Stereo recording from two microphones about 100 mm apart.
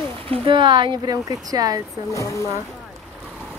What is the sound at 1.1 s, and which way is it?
Speech, 40° right (ahead or behind).